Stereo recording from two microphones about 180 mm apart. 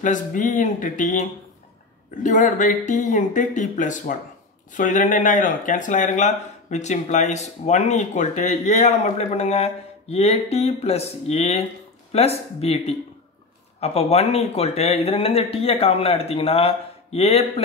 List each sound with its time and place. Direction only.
0.0 s speech: 45° left (ahead or behind)
2.2 s speech: 45° left (ahead or behind)